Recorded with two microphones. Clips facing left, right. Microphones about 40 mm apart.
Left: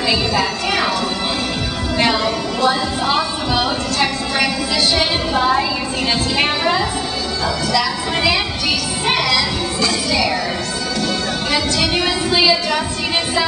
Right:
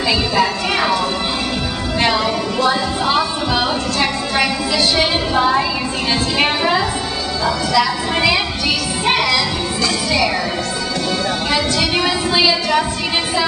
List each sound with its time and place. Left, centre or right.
0.1 s a woman's voice: centre
2.0 s a woman's voice: centre
11.5 s a woman's voice: centre